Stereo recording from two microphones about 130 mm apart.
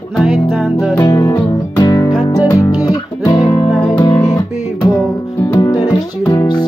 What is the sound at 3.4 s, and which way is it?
Music, 45° left (ahead or behind).